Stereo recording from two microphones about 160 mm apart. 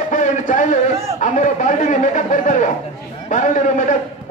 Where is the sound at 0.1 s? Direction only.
55° left (ahead or behind).